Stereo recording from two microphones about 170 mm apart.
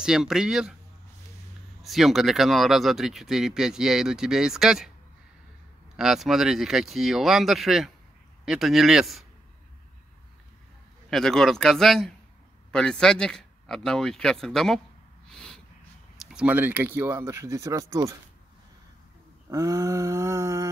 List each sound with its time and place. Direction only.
0.0 s speech: 5° right (ahead or behind)
1.8 s speech: centre (ahead or behind)
5.9 s speech: centre (ahead or behind)
11.1 s speech: centre (ahead or behind)
15.2 s a sound: 5° left (ahead or behind)
16.2 s speech: 5° right (ahead or behind); by 18.1 s 20° right (ahead or behind)
19.5 s a sound: 20° right (ahead or behind)